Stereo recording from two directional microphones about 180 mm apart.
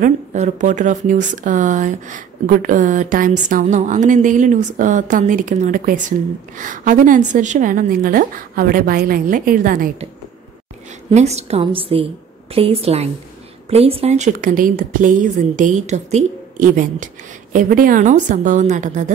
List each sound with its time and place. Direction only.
0.0 s a woman's voice: 45° right (ahead or behind)
11.1 s a woman's voice: 35° right (ahead or behind)